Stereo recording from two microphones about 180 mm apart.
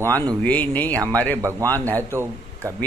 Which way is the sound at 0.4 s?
10° left (ahead or behind).